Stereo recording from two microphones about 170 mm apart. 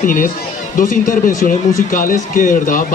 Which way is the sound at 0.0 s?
55° left (ahead or behind).